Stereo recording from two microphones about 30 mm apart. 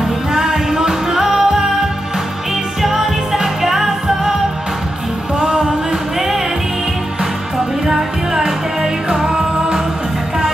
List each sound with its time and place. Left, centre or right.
0.0 s music: centre
2.8 s music: centre
5.4 s music: right
6.1 s music: centre
7.5 s music: centre